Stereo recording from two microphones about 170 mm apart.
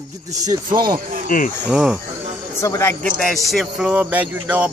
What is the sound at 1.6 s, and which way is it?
Speech, 5° right (ahead or behind).